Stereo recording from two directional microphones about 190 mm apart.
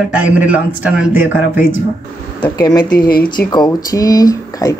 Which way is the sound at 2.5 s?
20° left (ahead or behind).